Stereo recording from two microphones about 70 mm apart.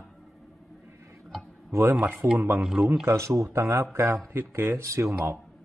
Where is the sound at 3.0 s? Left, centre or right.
Right.